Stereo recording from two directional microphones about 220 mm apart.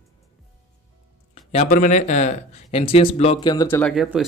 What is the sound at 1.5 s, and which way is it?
Speech, 35° left (ahead or behind).